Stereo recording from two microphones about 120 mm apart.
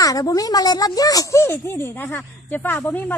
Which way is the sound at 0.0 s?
30° left (ahead or behind).